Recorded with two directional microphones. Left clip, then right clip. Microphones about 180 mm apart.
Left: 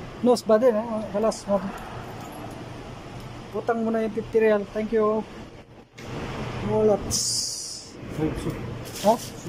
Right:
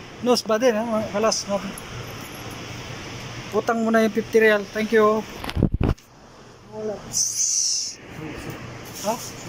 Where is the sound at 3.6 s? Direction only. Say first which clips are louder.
Right 4 dB; 5° left (ahead or behind).